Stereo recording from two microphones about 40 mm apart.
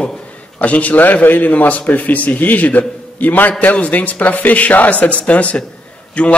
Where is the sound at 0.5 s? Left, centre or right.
Left.